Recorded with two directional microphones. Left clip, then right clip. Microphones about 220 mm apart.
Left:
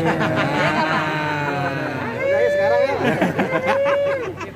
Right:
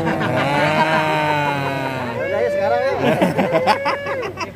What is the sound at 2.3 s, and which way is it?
Speech, 15° left (ahead or behind).